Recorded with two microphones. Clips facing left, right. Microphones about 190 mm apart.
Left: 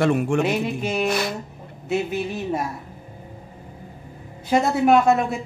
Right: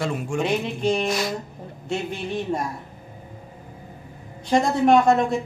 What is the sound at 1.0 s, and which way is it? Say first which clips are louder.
Speech: left 1 dB; 60° left (ahead or behind).